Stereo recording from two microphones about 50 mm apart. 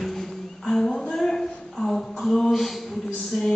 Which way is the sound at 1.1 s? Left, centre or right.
Centre.